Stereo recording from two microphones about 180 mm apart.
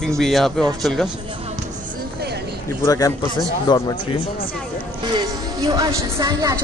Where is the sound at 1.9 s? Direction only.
60° right (ahead or behind).